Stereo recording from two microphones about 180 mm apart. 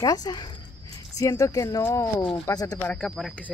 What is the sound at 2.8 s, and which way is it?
Speech, 5° left (ahead or behind).